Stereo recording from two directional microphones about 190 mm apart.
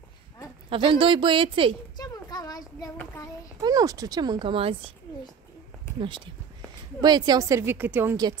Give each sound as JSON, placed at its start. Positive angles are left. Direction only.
{"t": 0.7, "sound": "speech", "side_deg": -30}
{"t": 2.0, "sound": "a sound", "side_deg": 20}
{"t": 3.6, "sound": "speech", "side_deg": -20}
{"t": 5.9, "sound": "a woman's voice", "side_deg": -25}